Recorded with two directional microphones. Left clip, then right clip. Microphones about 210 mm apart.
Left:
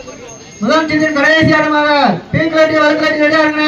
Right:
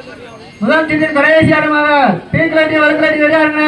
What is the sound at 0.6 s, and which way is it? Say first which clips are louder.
A man's voice: even; 35° right (ahead or behind).